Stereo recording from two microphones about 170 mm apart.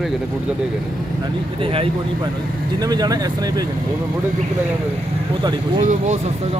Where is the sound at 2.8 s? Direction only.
20° right (ahead or behind).